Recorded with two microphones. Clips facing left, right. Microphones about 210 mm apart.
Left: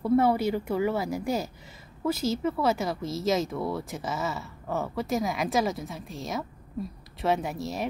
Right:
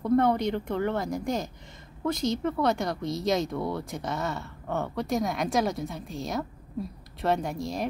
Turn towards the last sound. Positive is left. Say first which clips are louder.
# even
turn(degrees=5)  # may be behind; listen again after turning